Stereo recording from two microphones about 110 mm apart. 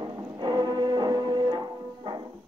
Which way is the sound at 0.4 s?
40° right (ahead or behind).